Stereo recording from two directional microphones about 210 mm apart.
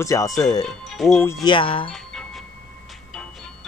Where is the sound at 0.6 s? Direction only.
Centre (ahead or behind).